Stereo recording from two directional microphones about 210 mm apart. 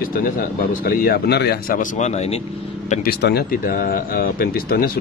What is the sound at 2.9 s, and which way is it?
Speech, 45° left (ahead or behind).